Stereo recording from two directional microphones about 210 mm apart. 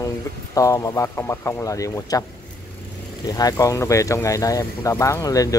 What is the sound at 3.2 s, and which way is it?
Speech, 20° left (ahead or behind).